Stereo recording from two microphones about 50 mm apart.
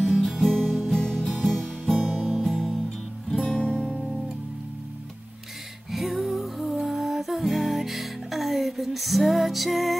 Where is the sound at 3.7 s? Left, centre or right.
Centre.